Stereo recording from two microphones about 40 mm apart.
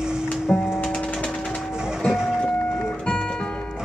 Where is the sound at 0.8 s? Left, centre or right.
Left.